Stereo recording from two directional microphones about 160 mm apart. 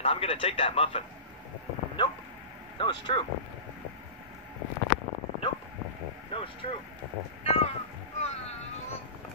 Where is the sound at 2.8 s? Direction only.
30° left (ahead or behind).